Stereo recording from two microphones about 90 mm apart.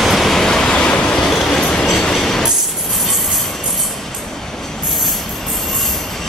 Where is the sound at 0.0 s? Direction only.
Centre (ahead or behind).